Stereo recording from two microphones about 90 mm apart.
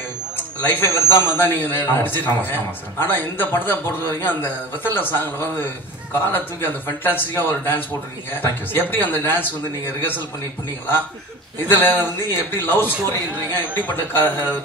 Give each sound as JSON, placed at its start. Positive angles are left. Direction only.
{"t": 0.6, "sound": "a man's voice", "side_deg": 25}
{"t": 11.6, "sound": "a man's voice", "side_deg": 20}